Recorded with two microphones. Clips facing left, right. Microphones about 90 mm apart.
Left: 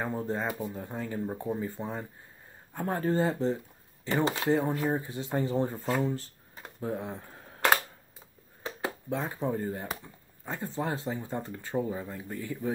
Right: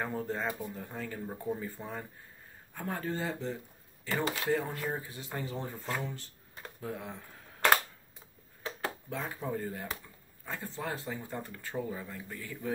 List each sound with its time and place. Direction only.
0.0 s speech: 20° left (ahead or behind)
2.7 s speech: 35° left (ahead or behind)
5.8 s speech: 5° left (ahead or behind)
6.0 s speech: 40° left (ahead or behind)
9.1 s speech: 35° left (ahead or behind)